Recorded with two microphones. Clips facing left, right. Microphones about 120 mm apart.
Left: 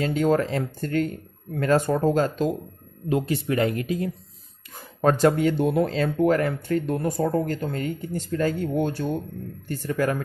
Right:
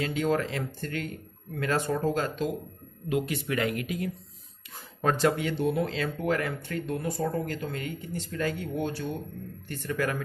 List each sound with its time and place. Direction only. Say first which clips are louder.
0.0 s speech: left 6 dB; 40° left (ahead or behind)
5.0 s speech: left 6 dB; 45° left (ahead or behind)
7.2 s speech: left 6 dB; 40° left (ahead or behind)
8.7 s speech: left 6 dB; 50° left (ahead or behind)
9.7 s speech: left 5 dB; 35° left (ahead or behind)